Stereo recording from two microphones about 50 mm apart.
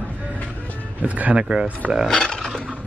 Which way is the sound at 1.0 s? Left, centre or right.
Right.